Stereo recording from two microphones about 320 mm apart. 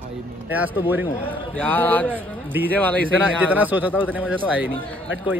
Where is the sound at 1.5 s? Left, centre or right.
Centre.